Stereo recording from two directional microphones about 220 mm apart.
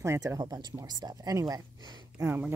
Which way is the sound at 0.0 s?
10° right (ahead or behind).